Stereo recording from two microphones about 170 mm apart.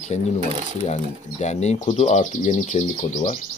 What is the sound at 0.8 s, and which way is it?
Speech, 40° left (ahead or behind).